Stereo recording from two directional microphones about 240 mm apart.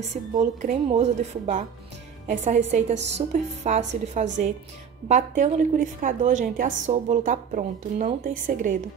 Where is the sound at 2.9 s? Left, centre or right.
Right.